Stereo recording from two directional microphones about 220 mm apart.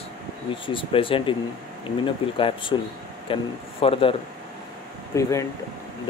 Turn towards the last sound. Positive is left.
turn(degrees=15)  # may be behind; listen again after turning